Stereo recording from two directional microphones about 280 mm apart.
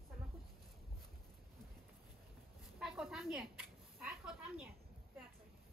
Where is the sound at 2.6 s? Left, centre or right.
Centre.